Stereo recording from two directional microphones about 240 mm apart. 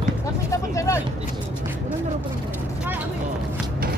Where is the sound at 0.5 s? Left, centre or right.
Centre.